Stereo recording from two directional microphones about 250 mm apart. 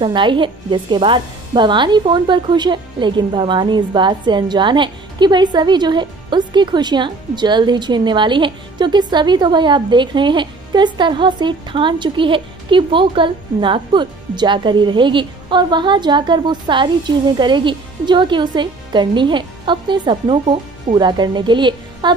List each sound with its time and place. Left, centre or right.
0.0 s speech: centre